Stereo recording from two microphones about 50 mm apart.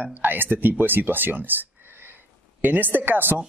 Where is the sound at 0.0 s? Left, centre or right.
Right.